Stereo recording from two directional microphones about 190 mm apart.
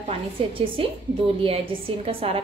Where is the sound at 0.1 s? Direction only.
30° right (ahead or behind).